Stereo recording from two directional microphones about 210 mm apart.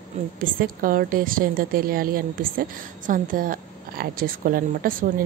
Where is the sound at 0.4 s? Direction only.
40° right (ahead or behind).